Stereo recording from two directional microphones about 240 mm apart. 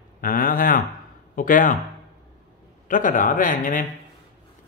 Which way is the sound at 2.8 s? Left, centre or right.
Left.